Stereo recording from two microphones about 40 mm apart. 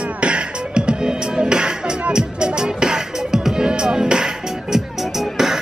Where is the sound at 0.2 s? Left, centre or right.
Right.